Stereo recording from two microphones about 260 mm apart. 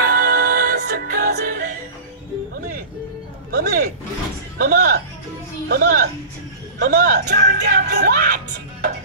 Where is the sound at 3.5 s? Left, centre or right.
Right.